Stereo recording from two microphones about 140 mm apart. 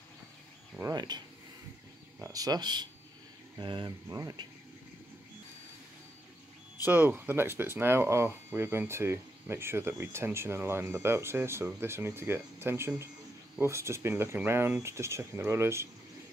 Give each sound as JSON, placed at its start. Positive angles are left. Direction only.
{"t": 0.9, "sound": "speech", "side_deg": -30}
{"t": 2.2, "sound": "speech", "side_deg": -25}
{"t": 6.8, "sound": "speech", "side_deg": -15}